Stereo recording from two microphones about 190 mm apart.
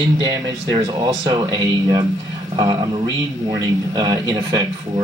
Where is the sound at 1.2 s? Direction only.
20° right (ahead or behind).